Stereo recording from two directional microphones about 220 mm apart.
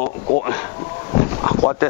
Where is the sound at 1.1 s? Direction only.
25° left (ahead or behind).